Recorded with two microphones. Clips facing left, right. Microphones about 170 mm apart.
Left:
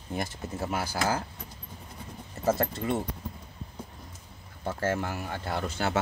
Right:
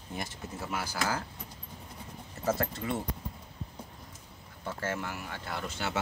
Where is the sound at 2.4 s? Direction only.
35° left (ahead or behind).